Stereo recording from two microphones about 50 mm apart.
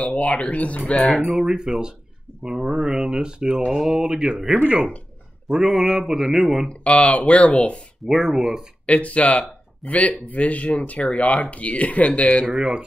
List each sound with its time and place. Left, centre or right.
0.0 s speech: left
1.3 s speech: centre
5.5 s speech: centre
6.8 s speech: left
8.1 s speech: centre
8.8 s speech: left
12.5 s speech: centre